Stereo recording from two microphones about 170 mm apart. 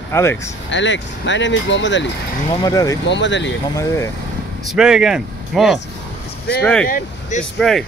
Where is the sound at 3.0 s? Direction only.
90° left.